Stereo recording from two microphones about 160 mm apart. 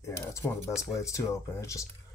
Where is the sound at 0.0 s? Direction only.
15° left (ahead or behind).